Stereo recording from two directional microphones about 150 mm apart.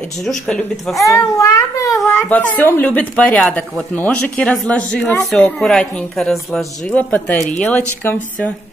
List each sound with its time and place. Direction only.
0.2 s a woman's voice: 5° left (ahead or behind)
1.0 s a child's voice: 20° left (ahead or behind)